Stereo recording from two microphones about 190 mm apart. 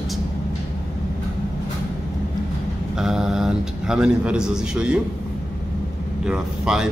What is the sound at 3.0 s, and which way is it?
A man's voice, centre (ahead or behind).